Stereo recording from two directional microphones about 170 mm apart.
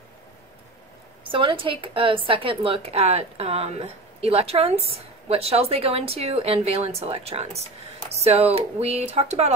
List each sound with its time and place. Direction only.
1.2 s a woman's voice: 30° right (ahead or behind)